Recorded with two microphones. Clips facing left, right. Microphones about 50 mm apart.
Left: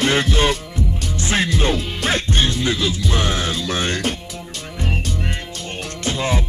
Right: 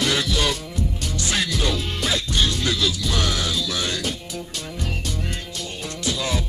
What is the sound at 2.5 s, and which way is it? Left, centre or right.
Music, left.